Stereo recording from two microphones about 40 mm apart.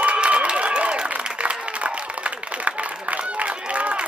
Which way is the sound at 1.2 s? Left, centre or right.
Right.